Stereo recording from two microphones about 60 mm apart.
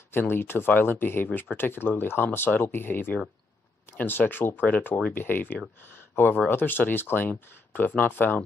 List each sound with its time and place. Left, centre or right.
0.1 s speech: left